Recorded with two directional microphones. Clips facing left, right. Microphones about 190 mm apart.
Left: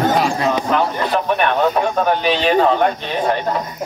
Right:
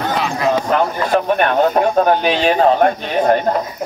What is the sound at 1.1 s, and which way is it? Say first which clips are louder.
Speech: right 4 dB; 45° right (ahead or behind).